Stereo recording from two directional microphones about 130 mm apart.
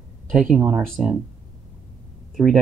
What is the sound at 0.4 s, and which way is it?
Speech, 10° right (ahead or behind).